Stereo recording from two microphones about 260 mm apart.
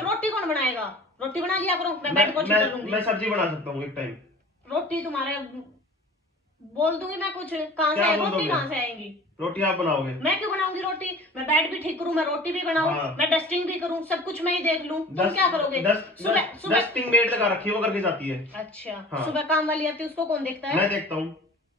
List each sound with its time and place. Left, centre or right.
0.1 s a woman's voice: centre
6.8 s a woman's voice: centre